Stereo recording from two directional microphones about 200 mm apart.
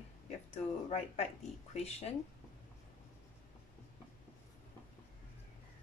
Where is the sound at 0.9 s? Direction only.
30° left (ahead or behind).